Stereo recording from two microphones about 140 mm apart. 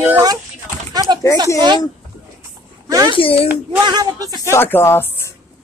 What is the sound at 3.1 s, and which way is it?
Speech, 40° left (ahead or behind).